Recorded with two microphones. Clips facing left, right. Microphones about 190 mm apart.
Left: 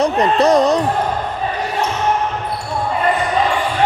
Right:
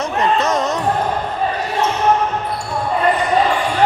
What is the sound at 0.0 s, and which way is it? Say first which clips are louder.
Speech: left 4 dB; 35° left (ahead or behind).